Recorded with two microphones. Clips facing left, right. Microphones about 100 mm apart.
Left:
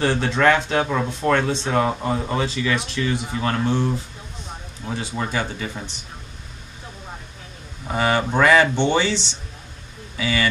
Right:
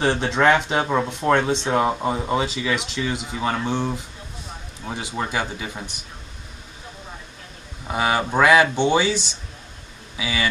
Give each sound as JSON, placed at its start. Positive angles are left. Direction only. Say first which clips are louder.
{"t": 0.0, "sound": "speech", "louder": "even", "side_deg": -15}
{"t": 7.9, "sound": "speech", "louder": "left 1 dB", "side_deg": -5}